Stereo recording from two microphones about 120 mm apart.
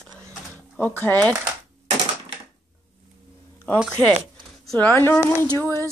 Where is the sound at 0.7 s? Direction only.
15° left (ahead or behind).